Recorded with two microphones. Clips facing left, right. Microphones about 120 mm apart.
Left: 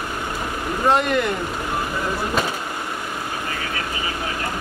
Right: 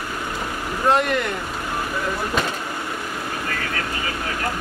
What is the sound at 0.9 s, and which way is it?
Speech, centre (ahead or behind).